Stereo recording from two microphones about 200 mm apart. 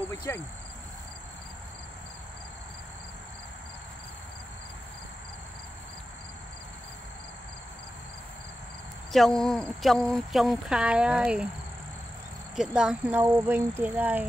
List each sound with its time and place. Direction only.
0.1 s speech: 15° left (ahead or behind)
9.1 s speech: centre (ahead or behind)
12.5 s speech: 5° right (ahead or behind)